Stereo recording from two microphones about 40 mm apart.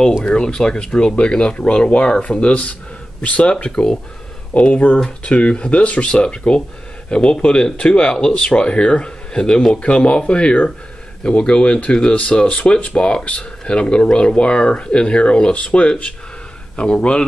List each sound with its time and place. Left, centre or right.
0.2 s speech: left
3.7 s speech: centre
4.6 s speech: left